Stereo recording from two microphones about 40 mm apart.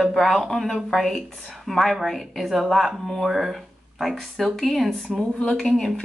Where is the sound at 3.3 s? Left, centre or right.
Centre.